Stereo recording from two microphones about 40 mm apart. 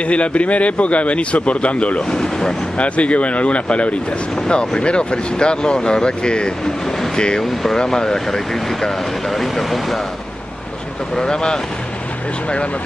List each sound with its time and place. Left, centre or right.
0.0 s speech: left
2.0 s speech: centre
2.8 s speech: left; by 9.9 s centre
11.1 s speech: centre